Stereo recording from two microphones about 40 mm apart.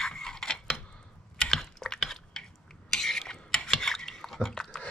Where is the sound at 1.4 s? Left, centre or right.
Centre.